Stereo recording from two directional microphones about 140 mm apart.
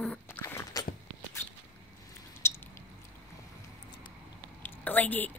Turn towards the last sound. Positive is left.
turn(degrees=10)  # may be behind; listen again after turning